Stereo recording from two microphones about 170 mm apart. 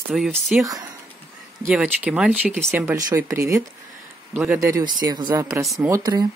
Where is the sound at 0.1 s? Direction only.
5° right (ahead or behind).